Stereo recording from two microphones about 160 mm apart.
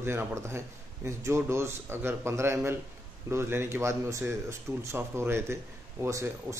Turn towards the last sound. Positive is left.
turn(degrees=-20)  # may be behind; listen again after turning